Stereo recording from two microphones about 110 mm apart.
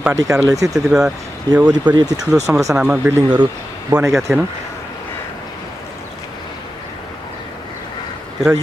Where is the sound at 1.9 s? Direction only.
35° right (ahead or behind).